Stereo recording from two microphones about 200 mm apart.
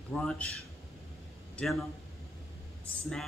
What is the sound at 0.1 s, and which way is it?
Speech, 5° left (ahead or behind).